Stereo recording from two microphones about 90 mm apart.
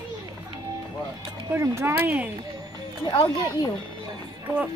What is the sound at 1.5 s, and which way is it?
Speech, 30° right (ahead or behind).